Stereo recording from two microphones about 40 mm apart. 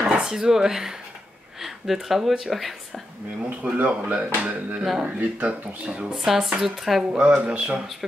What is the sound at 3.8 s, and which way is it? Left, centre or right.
Speech, right.